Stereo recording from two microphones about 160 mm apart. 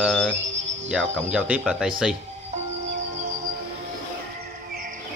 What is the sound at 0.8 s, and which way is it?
Speech, 5° right (ahead or behind).